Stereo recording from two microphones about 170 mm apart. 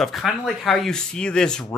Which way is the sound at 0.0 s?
Centre (ahead or behind).